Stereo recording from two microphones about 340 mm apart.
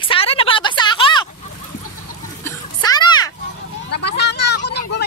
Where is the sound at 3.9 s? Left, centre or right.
Left.